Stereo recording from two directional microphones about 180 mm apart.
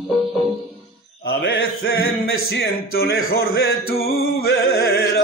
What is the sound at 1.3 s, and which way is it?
Mantra, 60° left (ahead or behind).